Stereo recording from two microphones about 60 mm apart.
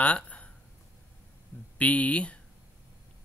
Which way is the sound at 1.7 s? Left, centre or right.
Left.